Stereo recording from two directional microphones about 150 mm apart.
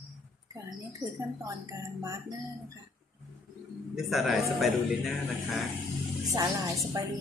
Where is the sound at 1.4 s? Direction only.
20° right (ahead or behind).